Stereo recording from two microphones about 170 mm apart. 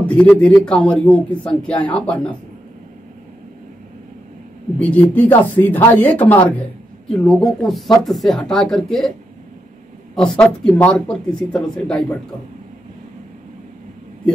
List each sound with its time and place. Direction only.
0.0 s speech: 5° left (ahead or behind)
4.7 s speech: 10° left (ahead or behind)
10.1 s speech: 5° left (ahead or behind)